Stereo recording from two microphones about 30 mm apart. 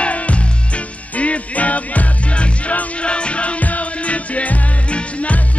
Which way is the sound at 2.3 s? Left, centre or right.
Left.